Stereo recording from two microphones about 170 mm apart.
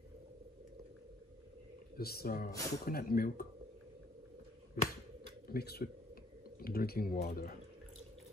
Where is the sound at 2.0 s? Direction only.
65° left (ahead or behind).